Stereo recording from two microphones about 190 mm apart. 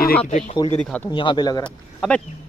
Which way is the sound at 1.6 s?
5° left (ahead or behind).